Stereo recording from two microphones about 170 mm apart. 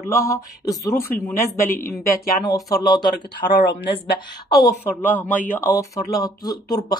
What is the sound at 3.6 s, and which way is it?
Speech, 75° left (ahead or behind).